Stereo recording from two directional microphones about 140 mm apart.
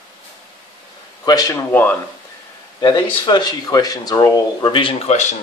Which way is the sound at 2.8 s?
30° left (ahead or behind).